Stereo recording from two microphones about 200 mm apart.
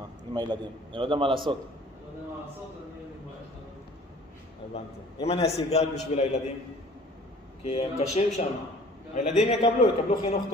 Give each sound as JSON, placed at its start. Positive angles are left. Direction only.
{"t": 0.3, "sound": "a man's voice", "side_deg": -20}
{"t": 4.7, "sound": "a man's voice", "side_deg": 30}
{"t": 7.6, "sound": "a man's voice", "side_deg": 30}